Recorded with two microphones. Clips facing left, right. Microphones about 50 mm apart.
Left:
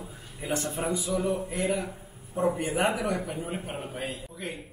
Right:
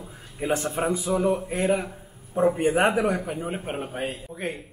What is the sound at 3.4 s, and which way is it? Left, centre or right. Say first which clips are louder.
A man's voice: right 4 dB; right.